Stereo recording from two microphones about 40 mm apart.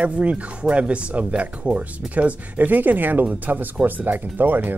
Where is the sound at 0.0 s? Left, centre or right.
Right.